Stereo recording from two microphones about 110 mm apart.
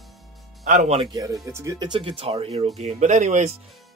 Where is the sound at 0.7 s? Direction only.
75° right (ahead or behind).